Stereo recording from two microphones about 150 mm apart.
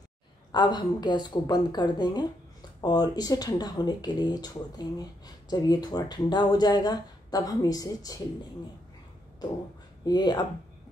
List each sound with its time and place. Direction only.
0.5 s speech: 30° left (ahead or behind)
10.0 s speech: 30° left (ahead or behind)